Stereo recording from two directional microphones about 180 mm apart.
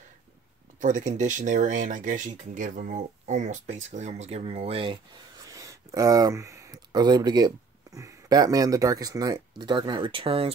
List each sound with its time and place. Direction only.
0.7 s speech: 45° right (ahead or behind)
5.5 s speech: 20° right (ahead or behind)